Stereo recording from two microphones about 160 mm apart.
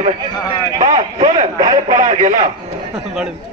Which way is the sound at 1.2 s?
40° right (ahead or behind).